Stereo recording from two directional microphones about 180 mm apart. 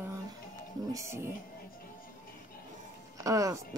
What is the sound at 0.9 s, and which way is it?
Speech, 15° right (ahead or behind).